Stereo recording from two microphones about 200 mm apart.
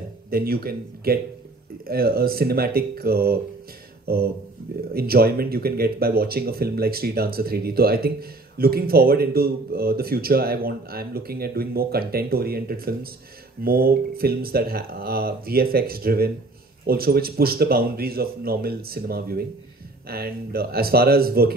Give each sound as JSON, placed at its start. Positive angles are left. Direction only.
{"t": 0.3, "sound": "speech", "side_deg": -50}